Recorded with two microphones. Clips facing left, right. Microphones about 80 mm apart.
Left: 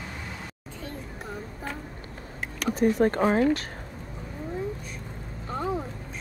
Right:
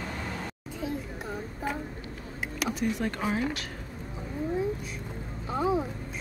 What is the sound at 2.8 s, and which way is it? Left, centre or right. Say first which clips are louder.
Speech: left 11 dB; left.